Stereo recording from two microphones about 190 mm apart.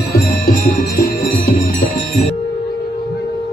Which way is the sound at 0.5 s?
50° left (ahead or behind).